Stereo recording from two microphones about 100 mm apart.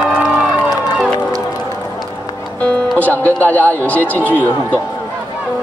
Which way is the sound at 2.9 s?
15° left (ahead or behind).